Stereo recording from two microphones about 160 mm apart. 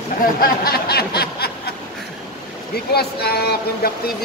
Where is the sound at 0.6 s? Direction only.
75° left (ahead or behind).